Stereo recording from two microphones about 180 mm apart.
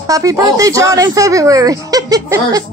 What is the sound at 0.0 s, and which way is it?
Speech, 20° right (ahead or behind).